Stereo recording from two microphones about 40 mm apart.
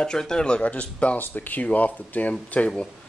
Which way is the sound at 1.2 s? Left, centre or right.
Left.